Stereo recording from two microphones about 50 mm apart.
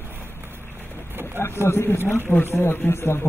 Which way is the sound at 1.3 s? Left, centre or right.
Left.